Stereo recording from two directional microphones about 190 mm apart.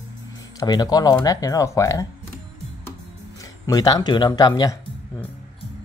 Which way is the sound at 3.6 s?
20° left (ahead or behind).